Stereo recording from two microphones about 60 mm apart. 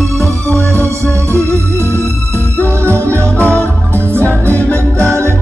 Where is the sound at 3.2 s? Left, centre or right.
Left.